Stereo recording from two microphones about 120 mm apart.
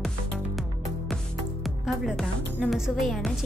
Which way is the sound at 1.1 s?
Centre (ahead or behind).